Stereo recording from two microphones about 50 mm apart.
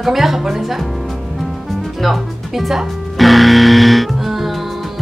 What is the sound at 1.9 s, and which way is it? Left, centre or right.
Music, centre.